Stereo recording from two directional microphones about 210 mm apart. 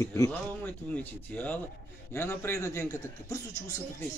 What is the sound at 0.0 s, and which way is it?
Speech, 15° left (ahead or behind).